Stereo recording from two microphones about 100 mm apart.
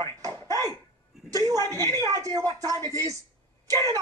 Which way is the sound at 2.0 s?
40° right (ahead or behind).